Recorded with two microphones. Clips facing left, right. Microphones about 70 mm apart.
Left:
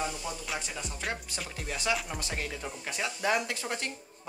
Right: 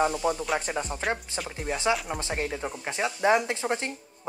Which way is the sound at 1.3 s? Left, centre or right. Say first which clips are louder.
Right 6 dB; right.